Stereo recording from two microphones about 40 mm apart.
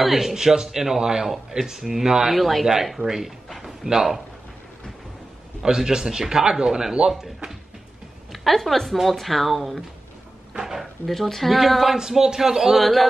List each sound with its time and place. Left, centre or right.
0.0 s a man's voice: centre
2.3 s a man's voice: centre
5.6 s a man's voice: centre
8.3 s speech: centre
10.5 s a sound: centre
11.1 s a man's voice: centre
12.8 s speech: centre